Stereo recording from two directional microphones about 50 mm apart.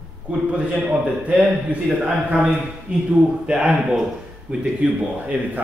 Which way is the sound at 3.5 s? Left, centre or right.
Centre.